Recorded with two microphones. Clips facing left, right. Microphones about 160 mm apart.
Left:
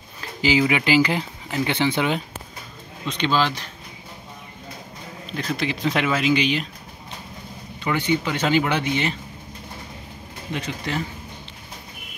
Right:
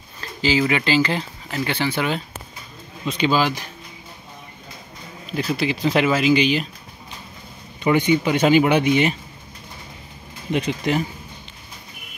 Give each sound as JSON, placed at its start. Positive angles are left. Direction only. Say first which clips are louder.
{"t": 0.2, "sound": "speech", "louder": "even", "side_deg": 15}
{"t": 3.1, "sound": "speech", "louder": "right 2 dB", "side_deg": -5}
{"t": 5.3, "sound": "speech", "louder": "right 4 dB", "side_deg": -10}
{"t": 7.8, "sound": "speech", "louder": "right 5 dB", "side_deg": -15}
{"t": 10.5, "sound": "speech", "louder": "right 7 dB", "side_deg": -15}